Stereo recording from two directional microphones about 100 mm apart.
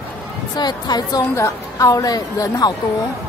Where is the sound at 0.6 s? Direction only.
45° left (ahead or behind).